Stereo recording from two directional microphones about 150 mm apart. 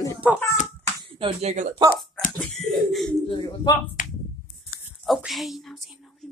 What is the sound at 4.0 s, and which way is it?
Finger snapping, 65° left (ahead or behind).